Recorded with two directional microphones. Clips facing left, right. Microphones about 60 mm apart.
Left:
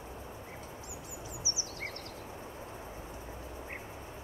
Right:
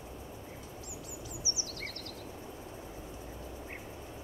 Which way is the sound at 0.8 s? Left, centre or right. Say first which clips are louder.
Even; left.